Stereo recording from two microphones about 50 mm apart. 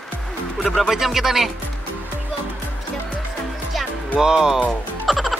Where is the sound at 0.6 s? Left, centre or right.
Centre.